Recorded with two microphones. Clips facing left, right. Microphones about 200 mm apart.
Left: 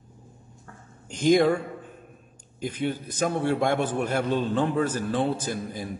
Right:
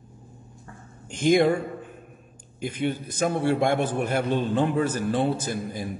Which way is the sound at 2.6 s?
10° right (ahead or behind).